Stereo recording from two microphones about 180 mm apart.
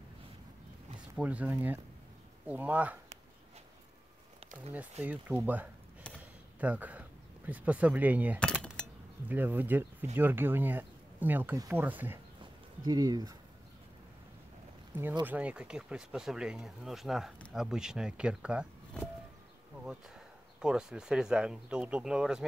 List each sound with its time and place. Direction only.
1.1 s speech: 10° right (ahead or behind)
5.0 s speech: 10° right (ahead or behind)
8.5 s a sound: centre (ahead or behind)
9.3 s speech: 10° right (ahead or behind)
12.8 s speech: 20° right (ahead or behind)
15.2 s speech: 10° right (ahead or behind)
18.9 s a sound: 5° left (ahead or behind)
19.8 s speech: 5° right (ahead or behind)